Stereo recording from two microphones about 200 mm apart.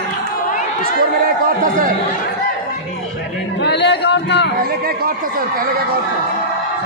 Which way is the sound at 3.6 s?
60° left (ahead or behind).